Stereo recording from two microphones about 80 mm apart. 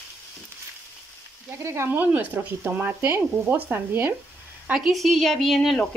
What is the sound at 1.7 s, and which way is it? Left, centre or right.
Speech, right.